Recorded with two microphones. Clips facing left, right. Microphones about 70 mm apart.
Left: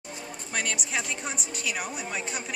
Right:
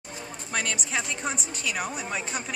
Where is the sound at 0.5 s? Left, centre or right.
Centre.